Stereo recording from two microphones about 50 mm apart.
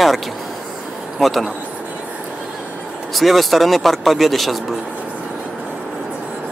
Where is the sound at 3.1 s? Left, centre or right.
Centre.